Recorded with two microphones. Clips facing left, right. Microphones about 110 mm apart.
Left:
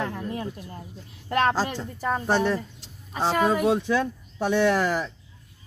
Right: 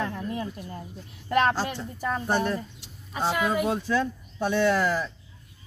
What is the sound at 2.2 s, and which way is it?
Speech, 85° left.